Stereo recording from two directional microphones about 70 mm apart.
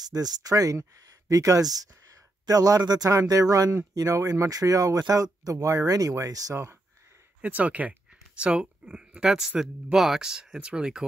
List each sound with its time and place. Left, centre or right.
0.1 s speech: right
6.5 s speech: right
7.4 s speech: right